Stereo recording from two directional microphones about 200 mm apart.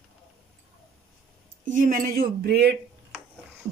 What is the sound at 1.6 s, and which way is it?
A woman's voice, 40° right (ahead or behind).